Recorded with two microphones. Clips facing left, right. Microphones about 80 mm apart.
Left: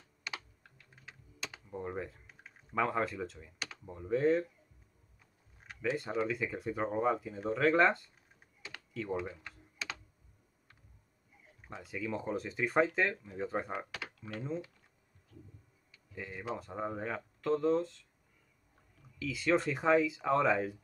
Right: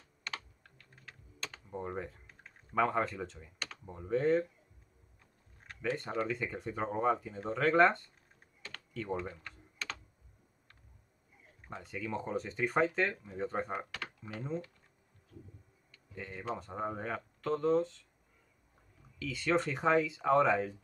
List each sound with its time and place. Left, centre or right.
0.2 s computer keyboard: centre
1.7 s speech: centre
5.6 s speech: centre
8.6 s typing: centre
11.6 s speech: centre
15.3 s a sound: centre
16.2 s speech: centre
19.1 s speech: centre